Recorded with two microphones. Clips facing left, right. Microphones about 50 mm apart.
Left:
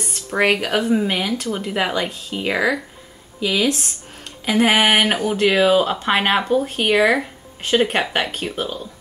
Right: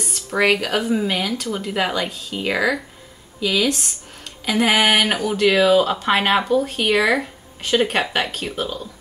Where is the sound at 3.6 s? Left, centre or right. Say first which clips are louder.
Left 1 dB; centre.